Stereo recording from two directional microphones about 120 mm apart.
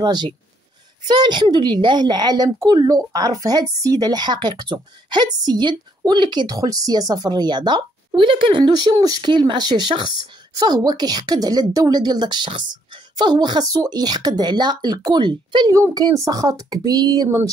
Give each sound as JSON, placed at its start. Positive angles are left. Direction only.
{"t": 0.0, "sound": "a woman's voice", "side_deg": -35}
{"t": 15.7, "sound": "a woman's voice", "side_deg": -30}